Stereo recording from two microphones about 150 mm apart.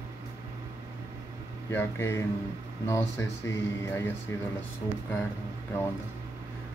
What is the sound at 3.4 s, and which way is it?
Speech, 15° left (ahead or behind).